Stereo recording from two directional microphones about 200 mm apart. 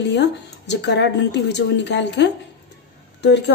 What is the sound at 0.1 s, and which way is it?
A woman's voice, 60° left (ahead or behind).